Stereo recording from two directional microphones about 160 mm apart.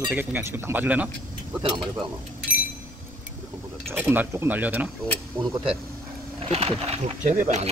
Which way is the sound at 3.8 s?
15° right (ahead or behind).